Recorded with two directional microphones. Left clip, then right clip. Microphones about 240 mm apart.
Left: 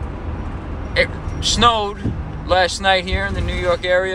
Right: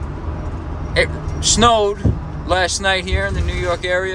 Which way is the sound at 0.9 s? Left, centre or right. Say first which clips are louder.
Right 1 dB; right.